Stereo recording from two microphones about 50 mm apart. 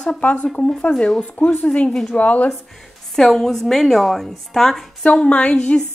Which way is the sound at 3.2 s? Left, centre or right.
Centre.